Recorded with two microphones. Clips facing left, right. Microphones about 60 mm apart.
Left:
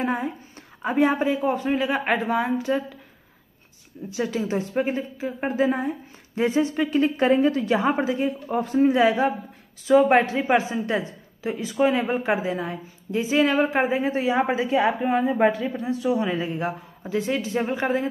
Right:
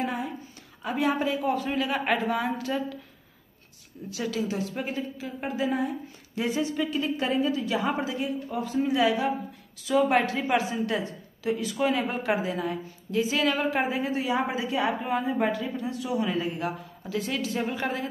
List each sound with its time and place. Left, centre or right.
0.0 s a woman's voice: left
4.1 s a woman's voice: left